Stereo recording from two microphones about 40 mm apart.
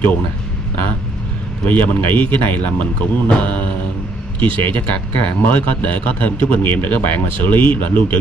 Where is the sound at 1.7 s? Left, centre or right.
Left.